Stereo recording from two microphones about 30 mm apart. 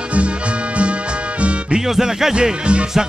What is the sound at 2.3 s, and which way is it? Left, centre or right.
Music, right.